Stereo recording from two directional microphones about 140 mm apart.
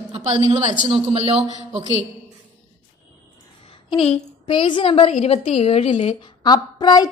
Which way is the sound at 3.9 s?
40° left (ahead or behind).